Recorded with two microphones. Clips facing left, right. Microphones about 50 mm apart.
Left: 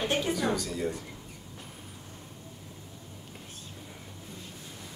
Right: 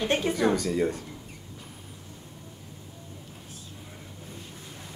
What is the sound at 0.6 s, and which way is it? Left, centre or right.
Speech, right.